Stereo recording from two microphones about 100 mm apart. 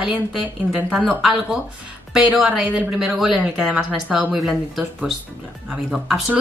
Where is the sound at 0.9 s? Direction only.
5° right (ahead or behind).